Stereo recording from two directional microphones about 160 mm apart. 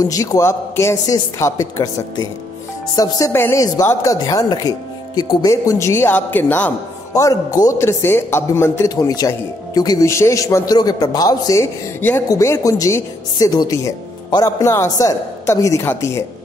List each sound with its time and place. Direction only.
0.0 s speech: 20° left (ahead or behind)
7.2 s speech: 20° left (ahead or behind)